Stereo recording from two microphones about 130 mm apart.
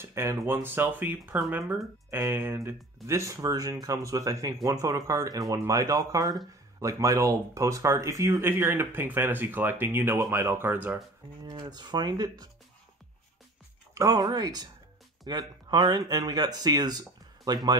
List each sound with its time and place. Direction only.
0.0 s speech: 20° right (ahead or behind)
11.4 s speech: 35° right (ahead or behind)
13.9 s speech: 25° right (ahead or behind)